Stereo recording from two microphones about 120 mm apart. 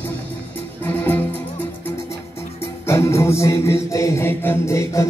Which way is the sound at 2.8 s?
20° left (ahead or behind).